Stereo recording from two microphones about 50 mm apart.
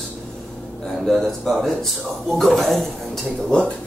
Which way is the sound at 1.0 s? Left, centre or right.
Centre.